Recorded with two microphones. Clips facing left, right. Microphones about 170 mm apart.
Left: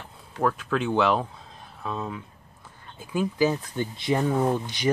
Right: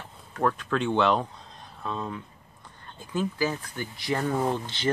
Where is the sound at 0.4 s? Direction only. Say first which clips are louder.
Left 1 dB; 5° left (ahead or behind); by 4.3 s 20° left (ahead or behind).